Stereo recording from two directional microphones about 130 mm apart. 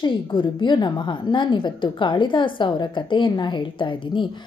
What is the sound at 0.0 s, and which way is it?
A woman's voice, 40° left (ahead or behind).